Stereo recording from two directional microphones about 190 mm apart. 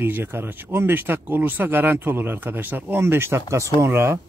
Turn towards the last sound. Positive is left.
turn(degrees=-15)  # may be behind; listen again after turning